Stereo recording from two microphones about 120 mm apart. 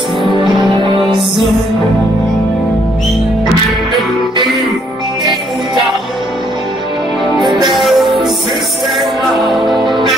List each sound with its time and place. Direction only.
0.3 s music: 40° right (ahead or behind)
7.3 s music: 35° right (ahead or behind)
7.7 s music: centre (ahead or behind)
9.4 s music: centre (ahead or behind)